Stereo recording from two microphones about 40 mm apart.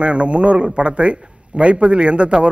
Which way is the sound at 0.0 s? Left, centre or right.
Right.